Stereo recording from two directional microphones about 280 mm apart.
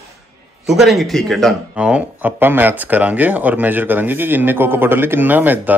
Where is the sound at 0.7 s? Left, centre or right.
Centre.